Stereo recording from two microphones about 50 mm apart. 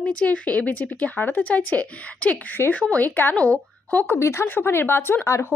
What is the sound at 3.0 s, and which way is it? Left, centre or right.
Speech, left.